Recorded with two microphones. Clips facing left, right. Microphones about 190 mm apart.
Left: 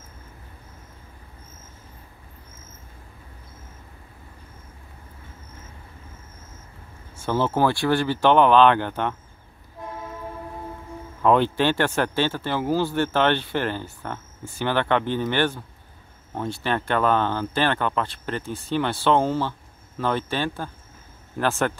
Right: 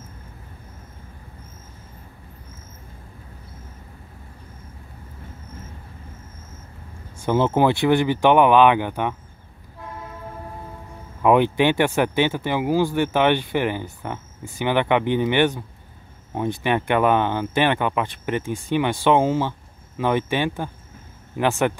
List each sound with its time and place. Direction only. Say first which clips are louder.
7.2 s speech: right 3 dB; 15° right (ahead or behind)
11.2 s speech: right 2 dB; 15° right (ahead or behind)